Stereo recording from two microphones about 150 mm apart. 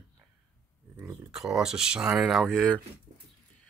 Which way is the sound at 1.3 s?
5° right (ahead or behind).